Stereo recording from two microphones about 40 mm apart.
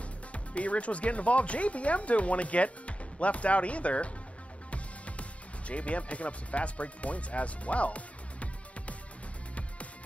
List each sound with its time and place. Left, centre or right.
0.3 s speech: left
4.6 s music: left
5.7 s speech: left